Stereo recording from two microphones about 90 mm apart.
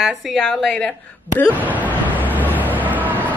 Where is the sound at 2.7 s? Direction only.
20° right (ahead or behind).